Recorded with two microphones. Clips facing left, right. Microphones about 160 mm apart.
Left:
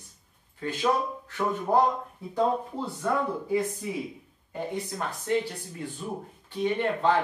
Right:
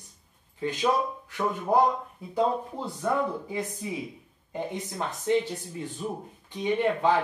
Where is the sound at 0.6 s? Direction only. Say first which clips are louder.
Right 1 dB; 15° right (ahead or behind).